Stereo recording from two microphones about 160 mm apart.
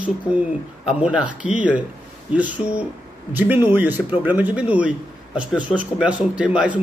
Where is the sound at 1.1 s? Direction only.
5° right (ahead or behind).